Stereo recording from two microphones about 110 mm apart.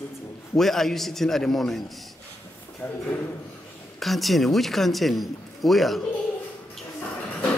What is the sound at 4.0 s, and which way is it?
A man's voice, centre (ahead or behind).